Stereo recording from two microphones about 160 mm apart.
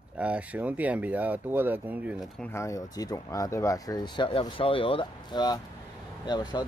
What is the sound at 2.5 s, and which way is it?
Speech, 20° left (ahead or behind).